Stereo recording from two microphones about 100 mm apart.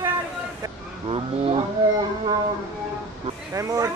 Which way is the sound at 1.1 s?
65° right (ahead or behind).